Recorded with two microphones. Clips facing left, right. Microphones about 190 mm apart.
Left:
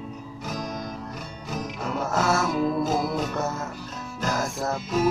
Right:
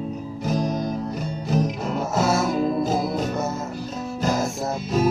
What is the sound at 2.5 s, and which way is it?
Music, 30° right (ahead or behind).